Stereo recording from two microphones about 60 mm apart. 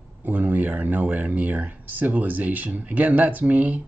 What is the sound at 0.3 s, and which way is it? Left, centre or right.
Speech, right.